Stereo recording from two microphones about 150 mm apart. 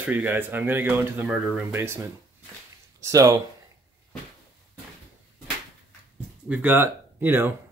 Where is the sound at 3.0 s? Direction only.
20° right (ahead or behind).